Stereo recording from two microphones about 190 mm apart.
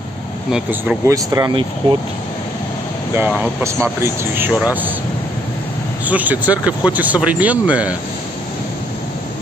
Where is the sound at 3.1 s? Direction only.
10° right (ahead or behind).